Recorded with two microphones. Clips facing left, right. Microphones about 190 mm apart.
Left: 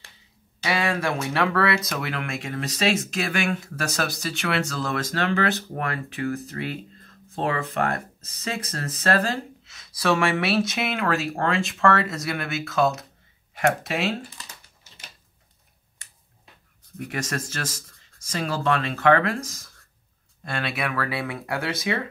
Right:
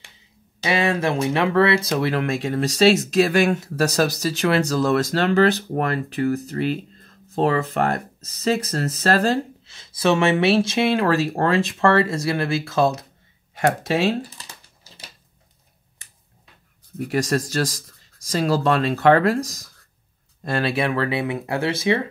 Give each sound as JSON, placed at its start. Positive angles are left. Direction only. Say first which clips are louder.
{"t": 0.7, "sound": "speech", "louder": "right 4 dB", "side_deg": -25}
{"t": 14.8, "sound": "a sound", "louder": "right 7 dB", "side_deg": -35}
{"t": 17.1, "sound": "speech", "louder": "right 9 dB", "side_deg": -35}